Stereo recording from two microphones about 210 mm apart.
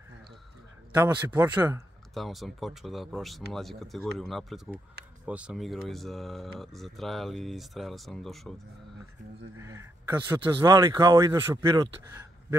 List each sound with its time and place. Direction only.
0.9 s speech: 10° right (ahead or behind)
2.1 s speech: centre (ahead or behind)
9.6 s speech: 15° right (ahead or behind)